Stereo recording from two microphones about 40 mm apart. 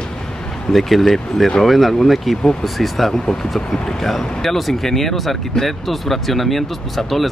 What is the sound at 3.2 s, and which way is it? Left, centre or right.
Speech, centre.